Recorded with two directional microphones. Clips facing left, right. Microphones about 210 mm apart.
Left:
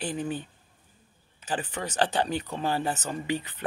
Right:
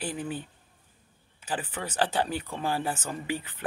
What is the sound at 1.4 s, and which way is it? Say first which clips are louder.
Speech: left 2 dB; 5° right (ahead or behind).